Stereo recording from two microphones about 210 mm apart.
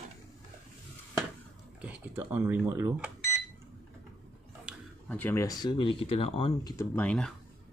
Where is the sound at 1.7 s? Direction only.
10° right (ahead or behind).